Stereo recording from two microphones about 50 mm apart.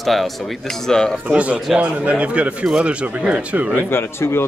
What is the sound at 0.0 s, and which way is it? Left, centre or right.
Speech, centre.